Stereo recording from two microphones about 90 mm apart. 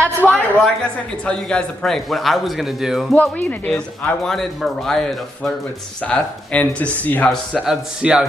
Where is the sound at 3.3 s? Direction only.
20° left (ahead or behind).